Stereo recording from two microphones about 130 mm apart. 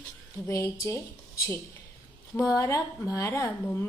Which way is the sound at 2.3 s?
25° left (ahead or behind).